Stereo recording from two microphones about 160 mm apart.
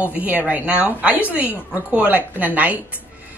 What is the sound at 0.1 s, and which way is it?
Speech, 10° right (ahead or behind).